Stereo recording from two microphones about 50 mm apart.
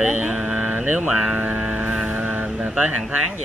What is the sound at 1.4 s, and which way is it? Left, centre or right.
Vehicle, centre.